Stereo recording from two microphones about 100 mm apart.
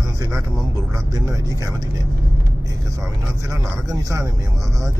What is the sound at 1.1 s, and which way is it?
Speech, 35° right (ahead or behind).